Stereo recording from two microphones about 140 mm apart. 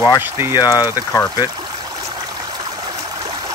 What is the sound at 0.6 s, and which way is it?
Speech, 30° left (ahead or behind).